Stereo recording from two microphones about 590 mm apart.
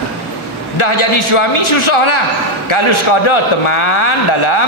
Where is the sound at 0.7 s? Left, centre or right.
Left.